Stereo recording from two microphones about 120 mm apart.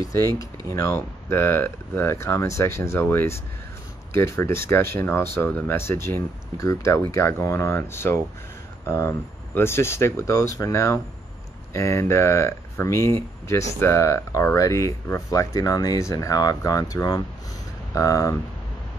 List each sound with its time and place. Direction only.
0.7 s speech: 25° left (ahead or behind)